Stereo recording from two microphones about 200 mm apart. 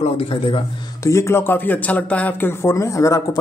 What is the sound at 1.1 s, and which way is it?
Speech, 15° left (ahead or behind).